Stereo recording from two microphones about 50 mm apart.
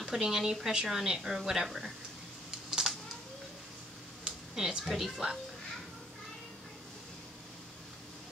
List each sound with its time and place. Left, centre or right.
0.0 s speech: centre
2.9 s a sound: centre
4.6 s a woman's voice: centre